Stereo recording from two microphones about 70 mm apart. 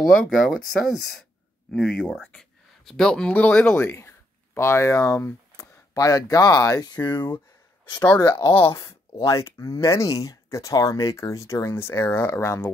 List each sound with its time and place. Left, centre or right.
0.0 s speech: centre
1.7 s speech: centre
3.8 s speech: left
6.9 s speech: left
7.9 s speech: left
8.5 s speech: left